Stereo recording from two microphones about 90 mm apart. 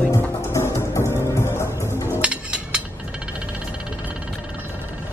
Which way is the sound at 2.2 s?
10° right (ahead or behind).